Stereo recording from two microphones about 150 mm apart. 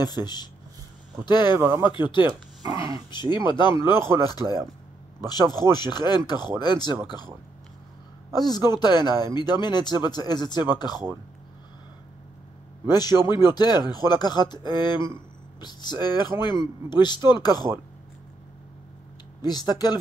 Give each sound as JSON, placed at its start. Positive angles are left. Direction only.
{"t": 0.0, "sound": "speech", "side_deg": 25}
{"t": 1.6, "sound": "speech", "side_deg": -15}
{"t": 1.9, "sound": "speech", "side_deg": 30}
{"t": 8.3, "sound": "speech", "side_deg": 25}
{"t": 12.8, "sound": "speech", "side_deg": 25}
{"t": 19.4, "sound": "speech", "side_deg": 25}